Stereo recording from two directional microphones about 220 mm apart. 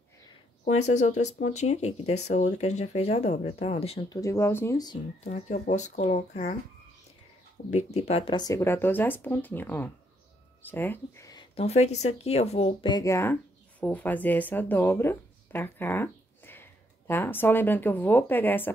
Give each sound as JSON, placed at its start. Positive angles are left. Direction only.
{"t": 0.7, "sound": "speech", "side_deg": 30}
{"t": 4.2, "sound": "speech", "side_deg": 15}
{"t": 5.2, "sound": "speech", "side_deg": 30}
{"t": 7.7, "sound": "speech", "side_deg": 30}